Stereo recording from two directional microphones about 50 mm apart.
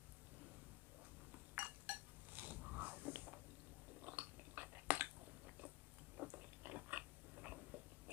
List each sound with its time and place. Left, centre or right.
1.3 s dishes: right
4.0 s chewing: right
6.2 s biting: right